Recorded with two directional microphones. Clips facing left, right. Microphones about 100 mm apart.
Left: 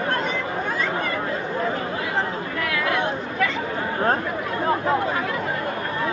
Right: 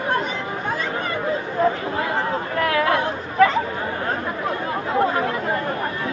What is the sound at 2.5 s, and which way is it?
Chatter, 40° right (ahead or behind).